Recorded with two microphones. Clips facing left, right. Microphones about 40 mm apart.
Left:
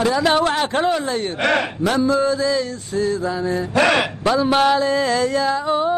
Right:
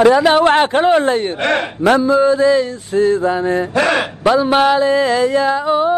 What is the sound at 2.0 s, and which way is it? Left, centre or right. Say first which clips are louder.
Mantra: right 6 dB; right.